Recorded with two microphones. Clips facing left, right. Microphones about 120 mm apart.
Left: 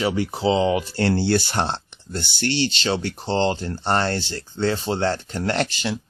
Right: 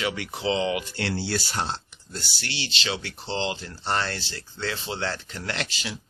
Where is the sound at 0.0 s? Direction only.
30° left (ahead or behind).